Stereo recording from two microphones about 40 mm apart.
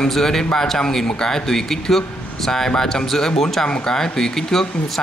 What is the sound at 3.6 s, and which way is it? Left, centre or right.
Speech, left.